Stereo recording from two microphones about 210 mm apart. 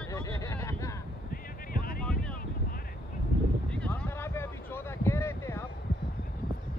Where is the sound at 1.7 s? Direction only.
45° left (ahead or behind).